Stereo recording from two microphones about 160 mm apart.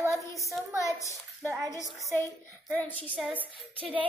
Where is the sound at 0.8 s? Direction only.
20° left (ahead or behind).